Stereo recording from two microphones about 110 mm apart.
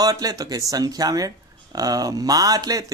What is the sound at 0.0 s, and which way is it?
Speech, 35° right (ahead or behind).